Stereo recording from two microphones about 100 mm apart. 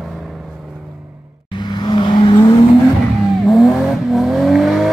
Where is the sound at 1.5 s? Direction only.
50° left (ahead or behind).